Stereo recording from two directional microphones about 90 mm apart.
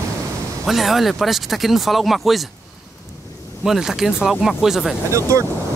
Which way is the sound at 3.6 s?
5° right (ahead or behind).